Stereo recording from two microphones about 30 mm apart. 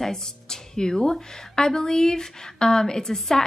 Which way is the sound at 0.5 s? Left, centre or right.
Left.